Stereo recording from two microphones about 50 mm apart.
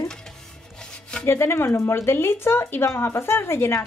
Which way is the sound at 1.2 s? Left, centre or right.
Left.